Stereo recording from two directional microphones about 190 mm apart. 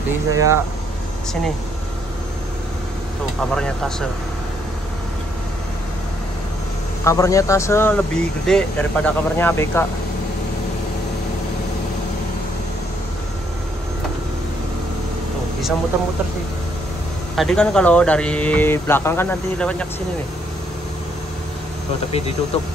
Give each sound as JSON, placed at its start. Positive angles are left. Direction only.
{"t": 0.3, "sound": "speech", "side_deg": -15}
{"t": 3.5, "sound": "speech", "side_deg": 5}
{"t": 7.1, "sound": "speech", "side_deg": 15}
{"t": 17.4, "sound": "speech", "side_deg": 5}